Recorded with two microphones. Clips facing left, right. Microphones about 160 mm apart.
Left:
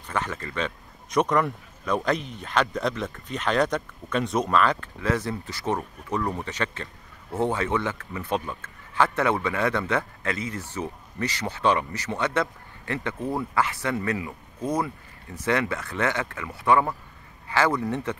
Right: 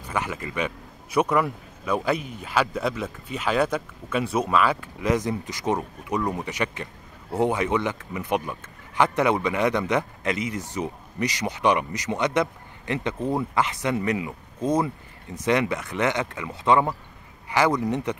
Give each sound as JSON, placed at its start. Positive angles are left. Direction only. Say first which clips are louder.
{"t": 0.0, "sound": "speech", "louder": "right 1 dB", "side_deg": -10}